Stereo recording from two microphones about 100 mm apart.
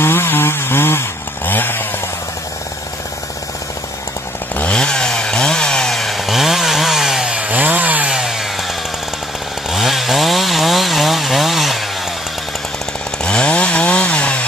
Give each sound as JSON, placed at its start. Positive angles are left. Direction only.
{"t": 0.0, "sound": "chainsaw", "side_deg": 25}
{"t": 4.6, "sound": "chainsaw", "side_deg": 10}
{"t": 8.1, "sound": "chainsaw", "side_deg": -5}
{"t": 9.7, "sound": "chainsaw", "side_deg": 0}
{"t": 13.2, "sound": "chainsaw", "side_deg": 10}